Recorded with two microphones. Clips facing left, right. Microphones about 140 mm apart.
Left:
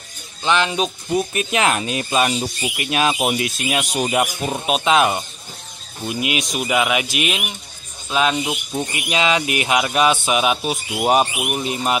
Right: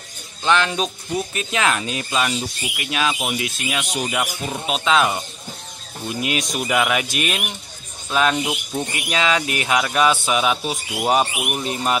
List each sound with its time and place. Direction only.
0.4 s speech: 15° left (ahead or behind)
1.5 s speech: 25° left (ahead or behind)
2.4 s speech: 35° left (ahead or behind)
3.0 s speech: 25° left (ahead or behind)
4.2 s speech: 20° left (ahead or behind)
8.4 s speech: 5° right (ahead or behind)
9.1 s speech: 15° left (ahead or behind)